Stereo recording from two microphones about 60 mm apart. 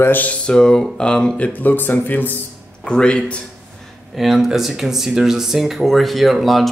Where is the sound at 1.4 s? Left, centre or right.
Left.